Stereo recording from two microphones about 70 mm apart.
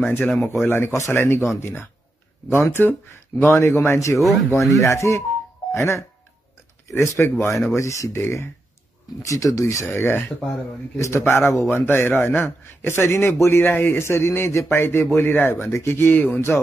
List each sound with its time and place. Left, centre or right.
0.0 s a man's voice: left
4.2 s speech: centre
4.7 s a man's voice: left
9.2 s speech: left
9.8 s a man's voice: left
15.6 s a man's voice: left